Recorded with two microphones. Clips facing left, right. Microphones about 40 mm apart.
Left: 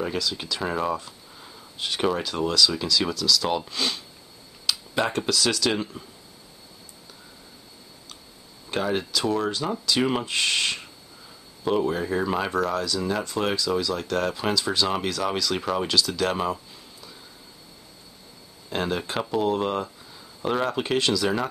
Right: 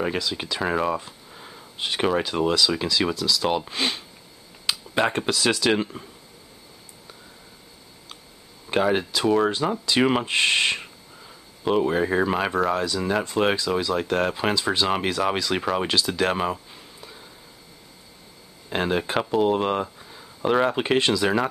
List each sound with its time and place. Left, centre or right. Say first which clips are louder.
0.0 s speech: right 2 dB; right
8.6 s speech: right 4 dB; right
11.9 s speech: right 3 dB; right
18.7 s speech: right 3 dB; right